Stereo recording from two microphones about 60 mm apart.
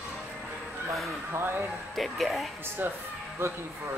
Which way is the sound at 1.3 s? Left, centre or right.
Right.